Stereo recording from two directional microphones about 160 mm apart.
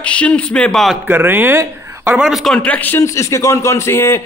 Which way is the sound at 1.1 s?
10° right (ahead or behind).